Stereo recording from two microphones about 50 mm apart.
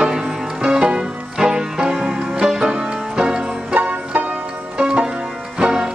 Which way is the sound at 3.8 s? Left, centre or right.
Right.